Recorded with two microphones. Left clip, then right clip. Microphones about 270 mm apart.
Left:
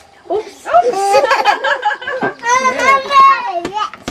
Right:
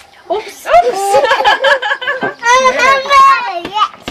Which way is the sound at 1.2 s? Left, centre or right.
Centre.